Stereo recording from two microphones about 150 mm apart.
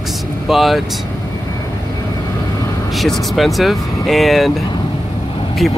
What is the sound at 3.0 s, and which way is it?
Speech, centre (ahead or behind).